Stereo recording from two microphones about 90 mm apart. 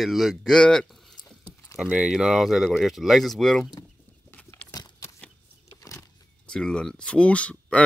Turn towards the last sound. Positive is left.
turn(degrees=15)  # may be behind; listen again after turning